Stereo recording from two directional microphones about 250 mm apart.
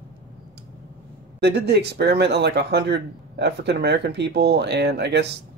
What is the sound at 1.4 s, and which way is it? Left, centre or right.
Speech, right.